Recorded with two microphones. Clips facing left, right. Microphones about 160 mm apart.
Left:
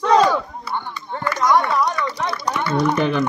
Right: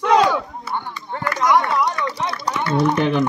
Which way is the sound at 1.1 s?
Centre (ahead or behind).